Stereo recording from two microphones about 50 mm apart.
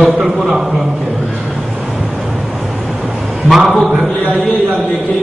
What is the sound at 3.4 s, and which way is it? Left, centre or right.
Speech, centre.